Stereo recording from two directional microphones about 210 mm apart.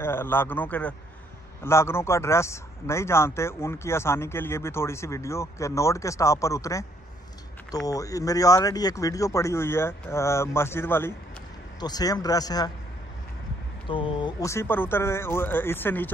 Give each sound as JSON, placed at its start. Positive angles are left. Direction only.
{"t": 0.0, "sound": "speech", "side_deg": 10}
{"t": 13.8, "sound": "speech", "side_deg": 25}